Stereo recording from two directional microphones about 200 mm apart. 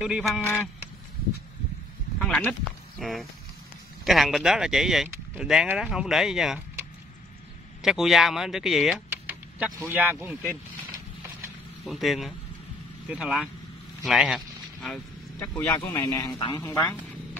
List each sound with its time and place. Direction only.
0.0 s speech: centre (ahead or behind)
2.1 s speech: 5° left (ahead or behind)
7.8 s speech: centre (ahead or behind)
11.8 s speech: centre (ahead or behind); by 16.6 s 25° left (ahead or behind)
16.6 s speech: 5° left (ahead or behind)